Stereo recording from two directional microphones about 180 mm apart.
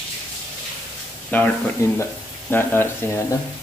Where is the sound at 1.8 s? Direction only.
15° left (ahead or behind).